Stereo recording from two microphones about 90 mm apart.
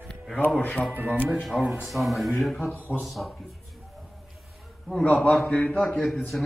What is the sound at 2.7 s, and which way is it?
Speech, 20° left (ahead or behind).